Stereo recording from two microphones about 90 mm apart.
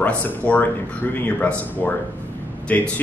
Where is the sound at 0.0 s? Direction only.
20° left (ahead or behind).